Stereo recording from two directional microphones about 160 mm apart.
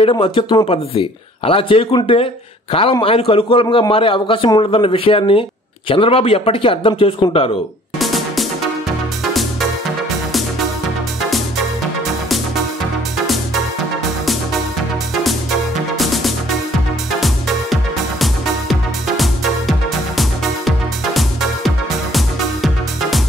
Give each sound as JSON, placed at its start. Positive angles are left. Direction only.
{"t": 0.0, "sound": "speech", "side_deg": 30}
{"t": 8.0, "sound": "music", "side_deg": 0}
{"t": 11.2, "sound": "music", "side_deg": 0}
{"t": 16.0, "sound": "music", "side_deg": 0}
{"t": 18.2, "sound": "music", "side_deg": 0}